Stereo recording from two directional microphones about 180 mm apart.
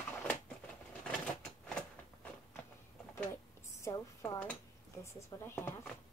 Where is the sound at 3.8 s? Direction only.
15° left (ahead or behind).